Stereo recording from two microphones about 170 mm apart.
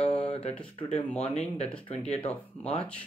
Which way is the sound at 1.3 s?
35° left (ahead or behind).